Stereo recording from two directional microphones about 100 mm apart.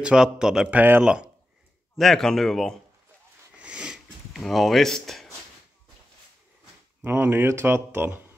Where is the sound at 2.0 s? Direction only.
5° left (ahead or behind).